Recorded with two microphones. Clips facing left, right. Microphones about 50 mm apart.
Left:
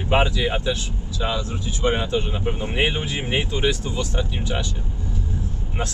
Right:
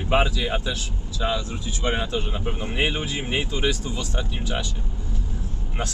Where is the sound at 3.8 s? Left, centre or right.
Centre.